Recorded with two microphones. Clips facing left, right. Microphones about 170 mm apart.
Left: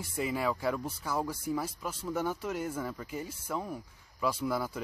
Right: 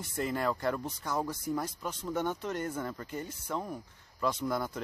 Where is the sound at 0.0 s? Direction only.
5° left (ahead or behind).